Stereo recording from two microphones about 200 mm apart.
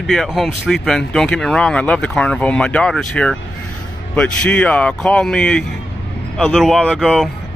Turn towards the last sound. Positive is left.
turn(degrees=0)  # may be behind; listen again after turning